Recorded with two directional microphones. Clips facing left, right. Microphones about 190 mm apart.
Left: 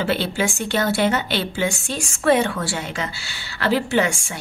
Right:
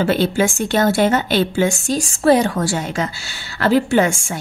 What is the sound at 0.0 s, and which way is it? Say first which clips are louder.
A woman's voice: right 5 dB; 45° right (ahead or behind).